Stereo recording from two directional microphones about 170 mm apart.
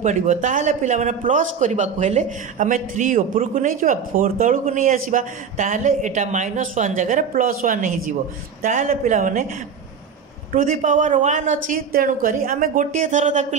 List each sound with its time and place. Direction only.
0.0 s a man's voice: 45° right (ahead or behind)
10.5 s a man's voice: 50° right (ahead or behind)